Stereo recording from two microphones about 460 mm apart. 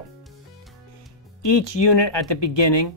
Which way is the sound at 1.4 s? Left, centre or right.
Left.